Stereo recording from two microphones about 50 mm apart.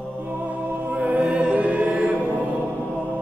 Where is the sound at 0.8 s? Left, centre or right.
Right.